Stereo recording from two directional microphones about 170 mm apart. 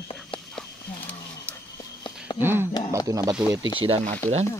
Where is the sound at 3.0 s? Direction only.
20° right (ahead or behind).